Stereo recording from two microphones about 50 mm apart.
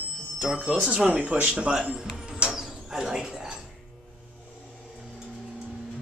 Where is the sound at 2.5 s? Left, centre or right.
Centre.